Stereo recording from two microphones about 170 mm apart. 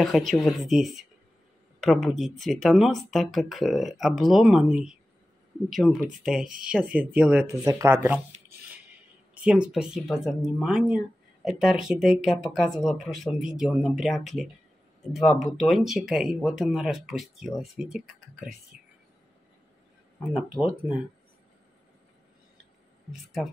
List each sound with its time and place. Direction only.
0.0 s speech: centre (ahead or behind)
6.4 s speech: 55° right (ahead or behind)
6.7 s speech: 5° right (ahead or behind)
9.3 s speech: 5° right (ahead or behind)
20.2 s speech: 5° right (ahead or behind)